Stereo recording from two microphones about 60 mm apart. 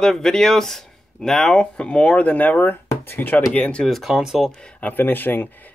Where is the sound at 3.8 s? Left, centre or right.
Centre.